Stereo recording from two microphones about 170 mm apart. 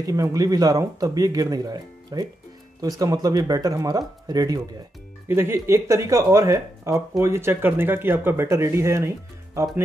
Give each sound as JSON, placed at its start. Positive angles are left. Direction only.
{"t": 0.0, "sound": "speech", "side_deg": -20}